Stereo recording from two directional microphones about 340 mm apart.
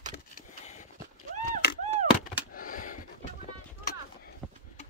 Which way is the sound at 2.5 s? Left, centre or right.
Left.